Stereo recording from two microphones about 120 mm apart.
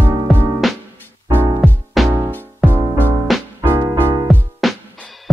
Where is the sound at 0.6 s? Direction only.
Centre (ahead or behind).